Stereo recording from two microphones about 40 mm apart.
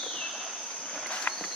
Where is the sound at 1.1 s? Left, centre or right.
Left.